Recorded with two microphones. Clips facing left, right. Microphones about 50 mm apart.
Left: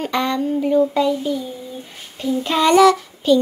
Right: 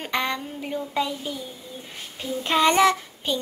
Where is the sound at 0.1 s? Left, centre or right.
Centre.